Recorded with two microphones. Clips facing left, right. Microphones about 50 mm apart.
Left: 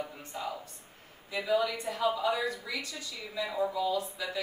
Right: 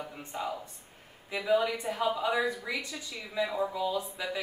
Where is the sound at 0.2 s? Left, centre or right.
Centre.